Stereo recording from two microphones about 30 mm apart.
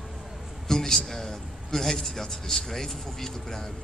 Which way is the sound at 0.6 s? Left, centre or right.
Centre.